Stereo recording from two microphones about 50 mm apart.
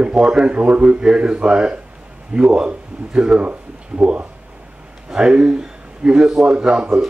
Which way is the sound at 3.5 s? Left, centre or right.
Right.